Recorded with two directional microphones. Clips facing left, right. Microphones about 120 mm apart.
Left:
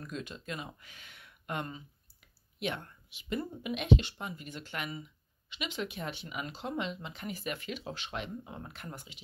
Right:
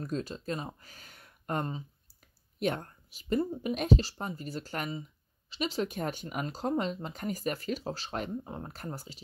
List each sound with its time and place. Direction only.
0.0 s speech: 35° right (ahead or behind)